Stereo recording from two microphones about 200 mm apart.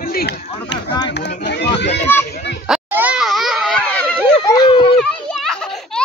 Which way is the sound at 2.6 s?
5° right (ahead or behind).